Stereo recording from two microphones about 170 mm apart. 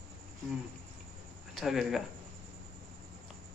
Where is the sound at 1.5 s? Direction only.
Centre (ahead or behind).